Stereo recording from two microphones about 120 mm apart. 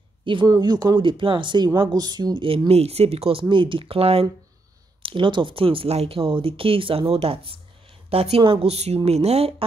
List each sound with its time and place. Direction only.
0.2 s speech: 45° right (ahead or behind)
2.7 s speech: 60° right (ahead or behind)